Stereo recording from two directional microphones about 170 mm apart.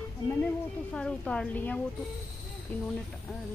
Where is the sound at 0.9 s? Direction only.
5° left (ahead or behind).